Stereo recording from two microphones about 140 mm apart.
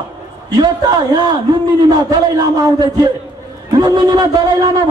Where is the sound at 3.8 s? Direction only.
30° right (ahead or behind).